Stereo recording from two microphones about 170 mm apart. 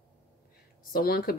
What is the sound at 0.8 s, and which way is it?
Speech, 60° left (ahead or behind).